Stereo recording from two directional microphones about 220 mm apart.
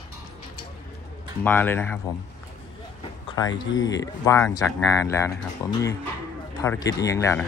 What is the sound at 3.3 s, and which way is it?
Speech, 20° left (ahead or behind).